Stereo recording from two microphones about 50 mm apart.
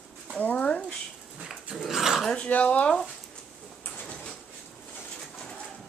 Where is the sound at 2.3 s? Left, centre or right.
Left.